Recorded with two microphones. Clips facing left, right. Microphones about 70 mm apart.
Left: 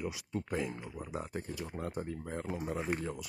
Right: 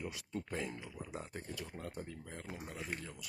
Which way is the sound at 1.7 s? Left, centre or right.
Left.